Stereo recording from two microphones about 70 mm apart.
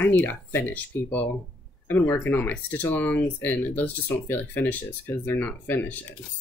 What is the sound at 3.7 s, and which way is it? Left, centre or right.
Speech, left.